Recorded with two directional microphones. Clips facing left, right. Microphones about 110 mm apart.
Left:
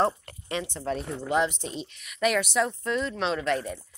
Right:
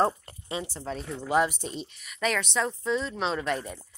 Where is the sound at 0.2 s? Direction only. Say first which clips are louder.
Left 2 dB; 25° right (ahead or behind).